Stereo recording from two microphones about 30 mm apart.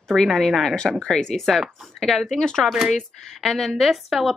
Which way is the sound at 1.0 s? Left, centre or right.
Left.